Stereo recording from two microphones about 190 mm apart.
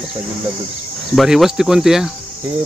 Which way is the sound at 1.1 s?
Centre (ahead or behind).